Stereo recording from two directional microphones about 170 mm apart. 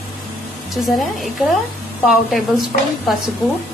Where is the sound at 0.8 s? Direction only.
Centre (ahead or behind).